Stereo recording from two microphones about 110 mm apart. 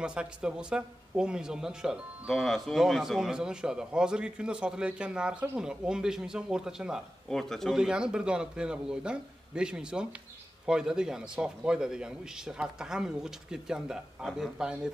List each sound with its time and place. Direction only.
0.0 s a man's voice: 10° right (ahead or behind)